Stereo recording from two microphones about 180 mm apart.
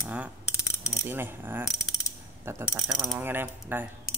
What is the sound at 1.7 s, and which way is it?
Mechanisms, 20° left (ahead or behind).